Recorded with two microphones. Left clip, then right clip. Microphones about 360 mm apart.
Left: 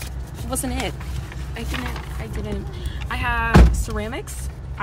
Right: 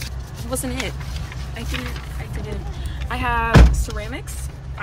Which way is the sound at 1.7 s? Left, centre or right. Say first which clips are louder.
Even; left.